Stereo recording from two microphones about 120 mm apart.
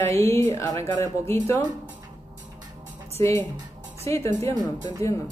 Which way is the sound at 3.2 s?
25° left (ahead or behind).